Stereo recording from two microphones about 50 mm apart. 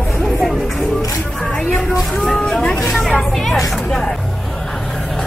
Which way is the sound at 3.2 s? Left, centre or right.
Centre.